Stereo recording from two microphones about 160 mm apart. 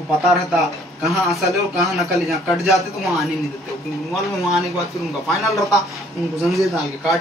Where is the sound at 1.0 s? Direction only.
Centre (ahead or behind).